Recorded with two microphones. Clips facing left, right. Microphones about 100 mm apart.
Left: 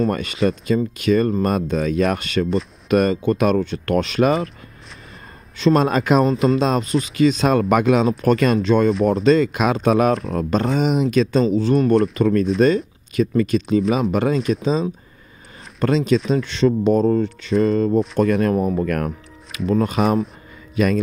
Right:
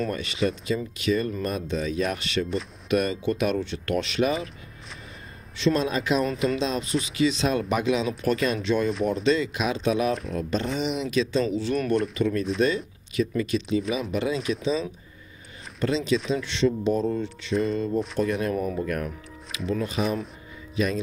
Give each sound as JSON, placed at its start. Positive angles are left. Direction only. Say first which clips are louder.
{"t": 0.1, "sound": "speech", "louder": "left 6 dB", "side_deg": 50}
{"t": 5.6, "sound": "speech", "louder": "left 7 dB", "side_deg": 50}
{"t": 11.4, "sound": "a man's voice", "louder": "left 8 dB", "side_deg": 35}
{"t": 18.8, "sound": "music", "louder": "left 7 dB", "side_deg": 60}
{"t": 20.0, "sound": "speech", "louder": "left 7 dB", "side_deg": 90}
{"t": 20.7, "sound": "speech", "louder": "left 7 dB", "side_deg": 65}